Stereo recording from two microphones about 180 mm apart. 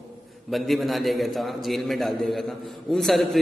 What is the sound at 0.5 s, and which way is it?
A man's voice, centre (ahead or behind).